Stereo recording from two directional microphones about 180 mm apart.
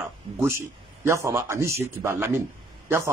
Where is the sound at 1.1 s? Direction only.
15° right (ahead or behind).